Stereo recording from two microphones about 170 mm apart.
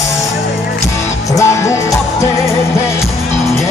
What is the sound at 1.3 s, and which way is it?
Music, 20° left (ahead or behind).